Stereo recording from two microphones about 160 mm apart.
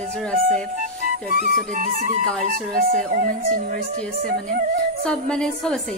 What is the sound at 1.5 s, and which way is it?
Speech, 60° right (ahead or behind).